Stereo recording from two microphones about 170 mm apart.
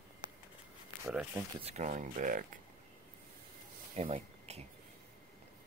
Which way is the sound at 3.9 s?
40° right (ahead or behind).